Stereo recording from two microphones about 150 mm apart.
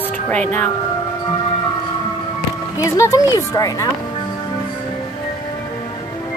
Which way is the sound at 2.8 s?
20° left (ahead or behind).